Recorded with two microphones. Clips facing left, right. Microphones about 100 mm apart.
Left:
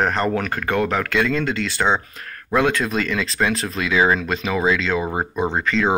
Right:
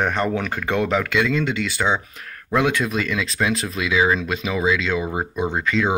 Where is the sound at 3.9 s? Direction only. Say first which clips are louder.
Left 1 dB; 35° left (ahead or behind).